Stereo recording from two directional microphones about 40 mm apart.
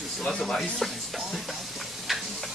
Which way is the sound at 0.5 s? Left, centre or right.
Centre.